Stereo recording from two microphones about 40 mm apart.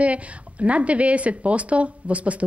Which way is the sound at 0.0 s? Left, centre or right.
Right.